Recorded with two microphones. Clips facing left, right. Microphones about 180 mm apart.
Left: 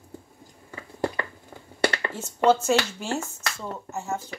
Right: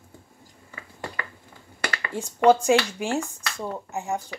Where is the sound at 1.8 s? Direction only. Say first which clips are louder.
Left 7 dB; 30° left (ahead or behind).